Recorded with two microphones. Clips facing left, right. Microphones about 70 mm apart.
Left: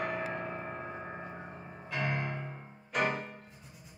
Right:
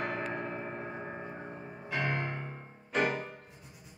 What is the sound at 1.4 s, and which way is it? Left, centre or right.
Music, centre.